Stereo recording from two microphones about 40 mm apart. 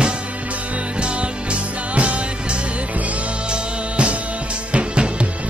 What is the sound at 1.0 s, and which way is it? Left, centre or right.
Music, right.